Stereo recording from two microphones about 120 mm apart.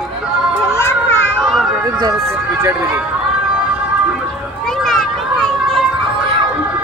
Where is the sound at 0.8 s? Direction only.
20° left (ahead or behind).